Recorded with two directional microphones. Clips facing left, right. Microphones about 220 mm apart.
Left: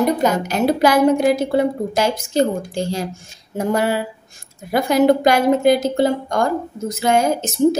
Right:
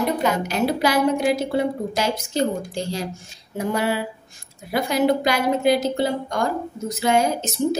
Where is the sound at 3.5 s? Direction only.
45° left (ahead or behind).